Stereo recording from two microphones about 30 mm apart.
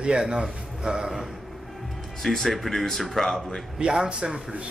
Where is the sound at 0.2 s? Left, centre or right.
Right.